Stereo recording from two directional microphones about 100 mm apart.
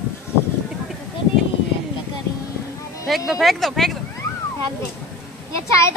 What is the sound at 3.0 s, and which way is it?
Speech, centre (ahead or behind).